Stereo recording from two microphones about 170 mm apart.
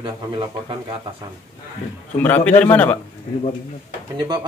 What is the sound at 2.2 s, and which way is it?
Speech, 10° left (ahead or behind).